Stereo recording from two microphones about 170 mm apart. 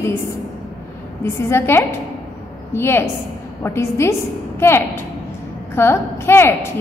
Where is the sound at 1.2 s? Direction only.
15° left (ahead or behind).